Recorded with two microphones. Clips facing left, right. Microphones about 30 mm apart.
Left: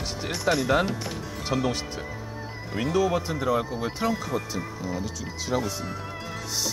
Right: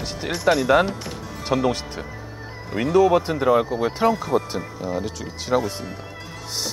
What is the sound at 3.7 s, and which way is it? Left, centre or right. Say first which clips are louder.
Speech: right 7 dB; centre.